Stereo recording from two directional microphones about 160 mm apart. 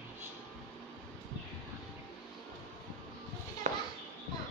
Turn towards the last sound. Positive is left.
turn(degrees=-50)  # may be behind; listen again after turning